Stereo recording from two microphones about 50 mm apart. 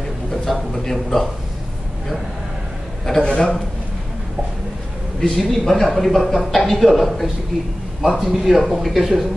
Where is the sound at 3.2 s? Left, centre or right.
Centre.